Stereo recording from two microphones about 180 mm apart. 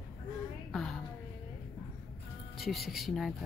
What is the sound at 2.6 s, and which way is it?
Speech, centre (ahead or behind).